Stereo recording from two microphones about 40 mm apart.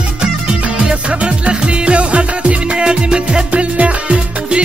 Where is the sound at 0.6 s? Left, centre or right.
Right.